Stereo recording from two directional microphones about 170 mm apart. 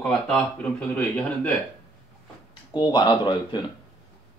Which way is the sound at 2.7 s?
25° left (ahead or behind).